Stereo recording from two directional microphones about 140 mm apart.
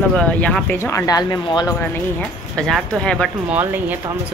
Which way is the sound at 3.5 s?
15° right (ahead or behind).